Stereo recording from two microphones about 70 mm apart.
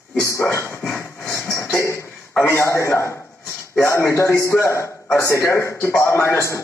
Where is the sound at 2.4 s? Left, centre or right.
Left.